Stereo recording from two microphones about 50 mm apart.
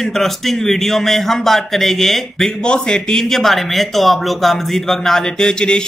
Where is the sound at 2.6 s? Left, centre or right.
Centre.